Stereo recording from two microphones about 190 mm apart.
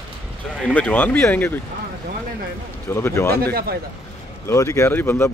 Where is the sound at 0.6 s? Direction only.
10° left (ahead or behind).